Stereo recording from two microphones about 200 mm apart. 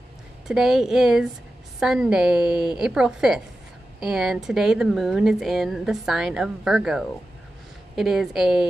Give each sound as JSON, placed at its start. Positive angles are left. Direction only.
{"t": 0.5, "sound": "speech", "side_deg": 0}